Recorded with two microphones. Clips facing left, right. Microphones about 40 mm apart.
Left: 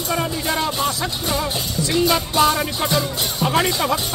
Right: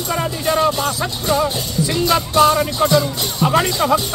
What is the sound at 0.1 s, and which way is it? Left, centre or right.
Music, centre.